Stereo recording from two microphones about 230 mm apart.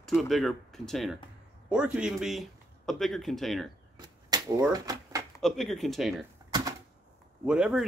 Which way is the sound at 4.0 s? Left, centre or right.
Centre.